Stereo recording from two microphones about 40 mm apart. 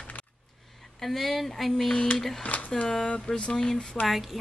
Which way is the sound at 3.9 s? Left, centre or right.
Centre.